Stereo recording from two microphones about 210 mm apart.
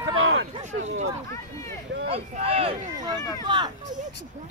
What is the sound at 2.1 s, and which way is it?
Speech, 25° right (ahead or behind).